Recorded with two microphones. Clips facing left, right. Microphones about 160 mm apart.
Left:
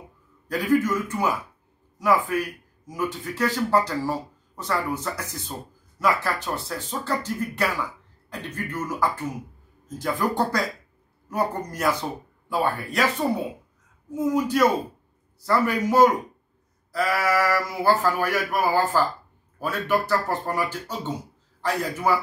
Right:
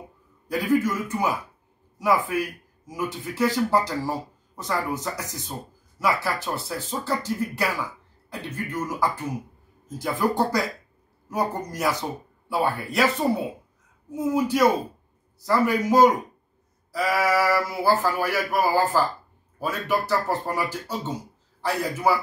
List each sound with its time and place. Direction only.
0.5 s speech: 10° right (ahead or behind)
14.1 s speech: 10° right (ahead or behind)